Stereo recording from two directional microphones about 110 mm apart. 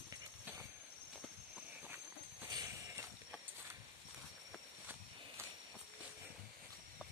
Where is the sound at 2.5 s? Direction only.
35° right (ahead or behind).